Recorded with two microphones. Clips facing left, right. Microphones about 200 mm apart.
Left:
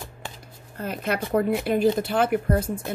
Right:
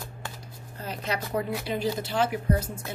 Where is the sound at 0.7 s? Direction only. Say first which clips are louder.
Left 5 dB; 55° left (ahead or behind).